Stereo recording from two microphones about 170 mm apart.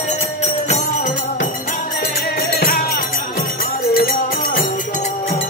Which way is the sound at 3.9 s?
60° left (ahead or behind).